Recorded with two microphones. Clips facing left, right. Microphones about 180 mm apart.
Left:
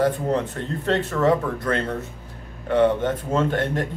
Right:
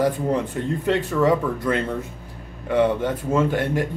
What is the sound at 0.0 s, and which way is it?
Speech, 10° right (ahead or behind).